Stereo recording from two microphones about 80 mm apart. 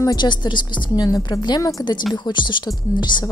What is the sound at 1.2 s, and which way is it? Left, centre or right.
Speech, left.